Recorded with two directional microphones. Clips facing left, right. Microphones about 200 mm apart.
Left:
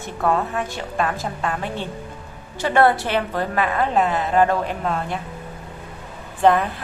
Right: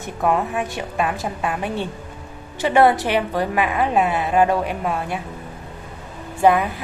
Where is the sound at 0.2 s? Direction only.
15° right (ahead or behind).